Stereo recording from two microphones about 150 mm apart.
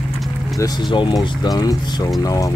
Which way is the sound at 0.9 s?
30° left (ahead or behind).